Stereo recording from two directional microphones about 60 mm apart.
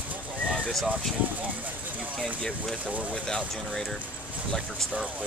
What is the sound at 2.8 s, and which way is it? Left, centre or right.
Speech, right.